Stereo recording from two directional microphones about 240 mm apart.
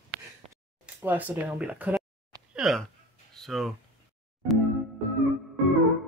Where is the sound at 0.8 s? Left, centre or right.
Centre.